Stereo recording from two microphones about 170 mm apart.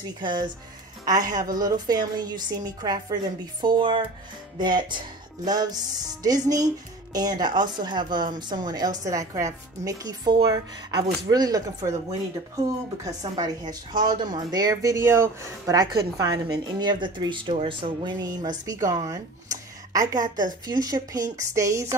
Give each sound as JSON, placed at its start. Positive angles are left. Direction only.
{"t": 0.2, "sound": "speech", "side_deg": -25}
{"t": 13.0, "sound": "speech", "side_deg": -20}